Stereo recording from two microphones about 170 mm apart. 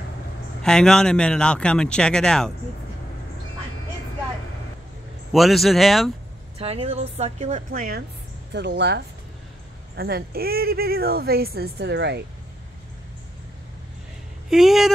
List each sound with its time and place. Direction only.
0.6 s a man's voice: 5° left (ahead or behind)
5.3 s a man's voice: centre (ahead or behind)
6.6 s a woman's voice: 35° right (ahead or behind); by 8.0 s 55° right (ahead or behind)
8.5 s speech: 85° right
9.9 s speech: 65° right (ahead or behind); by 12.2 s 85° right
14.5 s a man's voice: centre (ahead or behind)